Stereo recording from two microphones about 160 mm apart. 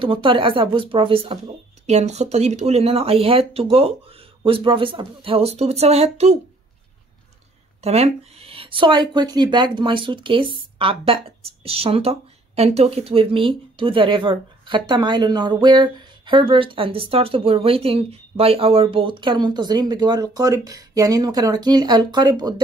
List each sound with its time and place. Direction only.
0.0 s speech: 35° right (ahead or behind)
7.8 s speech: 40° right (ahead or behind); by 22.6 s 25° right (ahead or behind)